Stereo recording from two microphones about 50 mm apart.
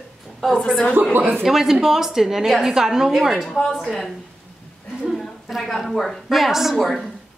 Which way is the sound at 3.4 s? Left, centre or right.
Centre.